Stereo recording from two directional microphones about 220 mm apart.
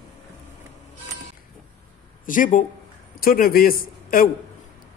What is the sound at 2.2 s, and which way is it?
A man's voice, 35° left (ahead or behind).